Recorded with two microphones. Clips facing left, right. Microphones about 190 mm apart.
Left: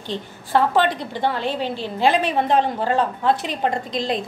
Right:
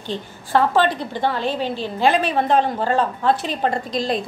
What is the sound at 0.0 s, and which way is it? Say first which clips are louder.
A woman's voice: right 1 dB; 20° left (ahead or behind).